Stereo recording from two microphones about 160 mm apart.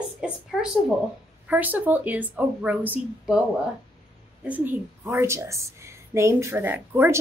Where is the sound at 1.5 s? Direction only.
10° right (ahead or behind).